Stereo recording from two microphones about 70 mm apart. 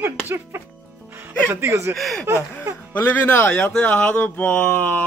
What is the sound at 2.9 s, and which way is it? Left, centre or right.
Speech, left.